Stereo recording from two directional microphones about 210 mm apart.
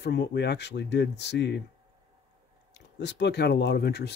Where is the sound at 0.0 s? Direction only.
55° left (ahead or behind).